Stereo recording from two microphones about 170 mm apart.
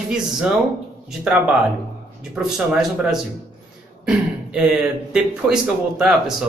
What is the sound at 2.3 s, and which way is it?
Speech, 5° right (ahead or behind).